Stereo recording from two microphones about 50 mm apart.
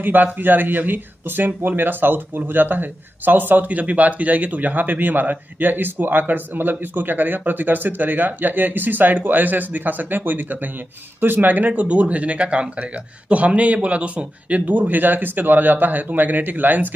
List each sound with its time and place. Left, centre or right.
0.0 s speech: right